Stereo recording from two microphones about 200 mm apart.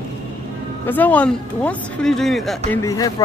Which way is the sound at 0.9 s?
10° left (ahead or behind).